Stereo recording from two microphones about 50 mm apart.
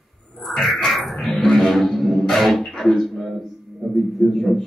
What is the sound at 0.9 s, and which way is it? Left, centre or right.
Music, centre.